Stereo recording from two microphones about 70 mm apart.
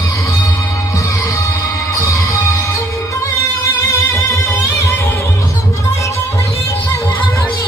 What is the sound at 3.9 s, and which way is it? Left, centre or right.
Music, left.